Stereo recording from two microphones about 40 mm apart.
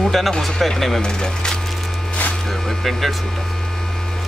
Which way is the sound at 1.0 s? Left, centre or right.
Centre.